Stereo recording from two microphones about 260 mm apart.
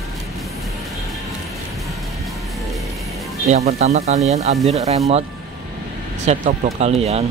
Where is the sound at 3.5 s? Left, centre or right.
Right.